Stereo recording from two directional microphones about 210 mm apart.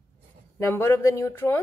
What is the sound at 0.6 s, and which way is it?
A woman's voice, 10° left (ahead or behind).